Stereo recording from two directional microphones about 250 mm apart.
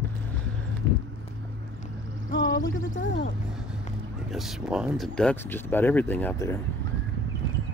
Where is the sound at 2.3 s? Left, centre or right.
Left.